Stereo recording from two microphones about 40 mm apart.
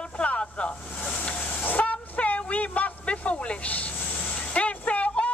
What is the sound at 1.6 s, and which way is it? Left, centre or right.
Train, left.